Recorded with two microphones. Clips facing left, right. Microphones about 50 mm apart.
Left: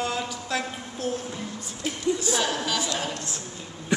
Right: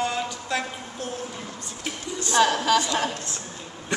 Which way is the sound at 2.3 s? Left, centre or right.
Right.